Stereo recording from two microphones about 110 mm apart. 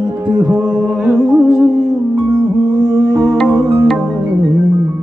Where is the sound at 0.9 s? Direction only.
10° right (ahead or behind).